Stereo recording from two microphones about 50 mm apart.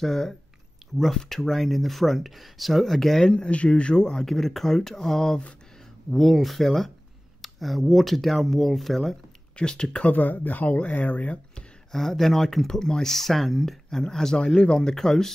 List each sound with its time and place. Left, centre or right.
0.0 s speech: centre
3.3 s speech: left; by 9.1 s centre
9.6 s speech: centre
10.0 s speech: left
11.9 s speech: centre